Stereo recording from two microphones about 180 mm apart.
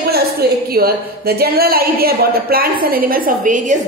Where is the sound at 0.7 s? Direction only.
55° right (ahead or behind).